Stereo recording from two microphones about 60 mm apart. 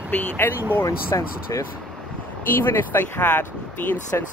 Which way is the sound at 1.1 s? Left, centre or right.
Left.